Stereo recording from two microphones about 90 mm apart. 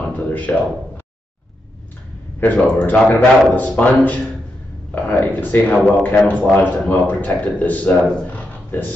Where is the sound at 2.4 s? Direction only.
20° left (ahead or behind).